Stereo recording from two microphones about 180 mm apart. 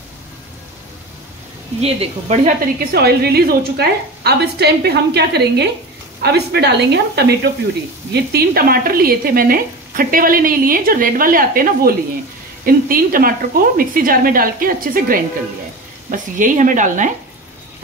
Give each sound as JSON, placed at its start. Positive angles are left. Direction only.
{"t": 1.8, "sound": "speech", "side_deg": -35}